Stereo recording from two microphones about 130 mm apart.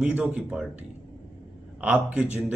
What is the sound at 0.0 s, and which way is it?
Speech, 10° right (ahead or behind).